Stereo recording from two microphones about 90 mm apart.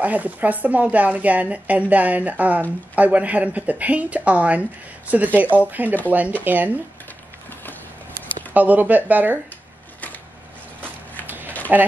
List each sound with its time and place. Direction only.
0.0 s speech: 15° right (ahead or behind)
8.5 s speech: 20° right (ahead or behind)
11.4 s a sound: 20° left (ahead or behind)